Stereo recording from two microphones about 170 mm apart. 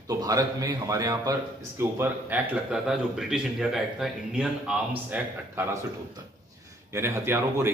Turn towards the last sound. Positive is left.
turn(degrees=-15)  # may be behind; listen again after turning